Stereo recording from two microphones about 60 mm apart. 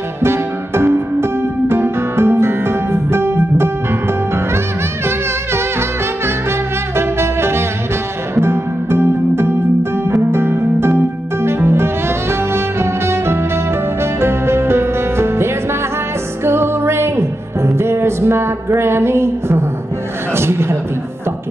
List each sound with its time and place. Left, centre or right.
0.2 s music: right
5.0 s music: right
20.3 s a sound: right